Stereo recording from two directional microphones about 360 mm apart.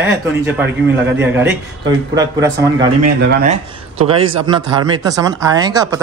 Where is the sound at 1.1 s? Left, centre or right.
Centre.